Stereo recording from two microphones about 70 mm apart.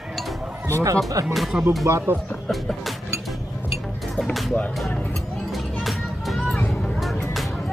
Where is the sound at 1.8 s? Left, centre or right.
Right.